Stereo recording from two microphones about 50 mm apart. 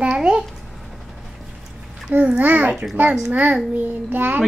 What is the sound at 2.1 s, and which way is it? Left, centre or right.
A child's voice, right.